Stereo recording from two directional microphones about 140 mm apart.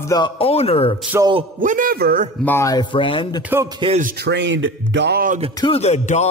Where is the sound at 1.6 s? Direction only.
70° right (ahead or behind); by 2.2 s 90° right.